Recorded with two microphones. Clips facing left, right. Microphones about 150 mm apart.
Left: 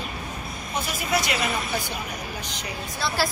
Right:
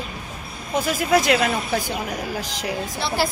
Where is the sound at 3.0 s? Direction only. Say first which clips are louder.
Right 2 dB; 20° right (ahead or behind).